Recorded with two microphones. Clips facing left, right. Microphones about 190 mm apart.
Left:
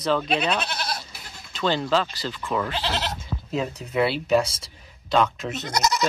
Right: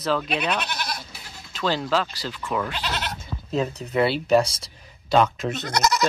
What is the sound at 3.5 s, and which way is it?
Speech, 5° left (ahead or behind).